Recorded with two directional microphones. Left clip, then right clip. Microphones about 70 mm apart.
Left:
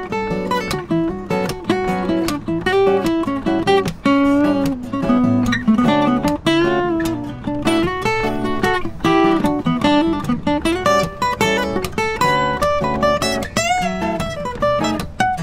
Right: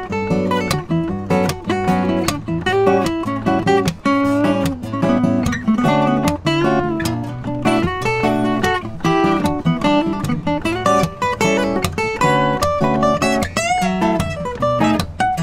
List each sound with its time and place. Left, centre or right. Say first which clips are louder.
0.3 s music: right 4 dB; centre
4.4 s music: even; right
5.5 s music: left 1 dB; centre